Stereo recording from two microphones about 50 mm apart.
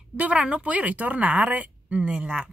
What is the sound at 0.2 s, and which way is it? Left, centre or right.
Speech, right.